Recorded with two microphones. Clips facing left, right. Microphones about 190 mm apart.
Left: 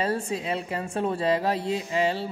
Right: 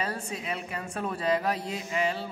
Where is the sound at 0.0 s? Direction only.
30° left (ahead or behind).